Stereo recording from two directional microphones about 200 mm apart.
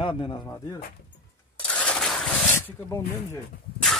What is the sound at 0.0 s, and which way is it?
Speech, 25° left (ahead or behind).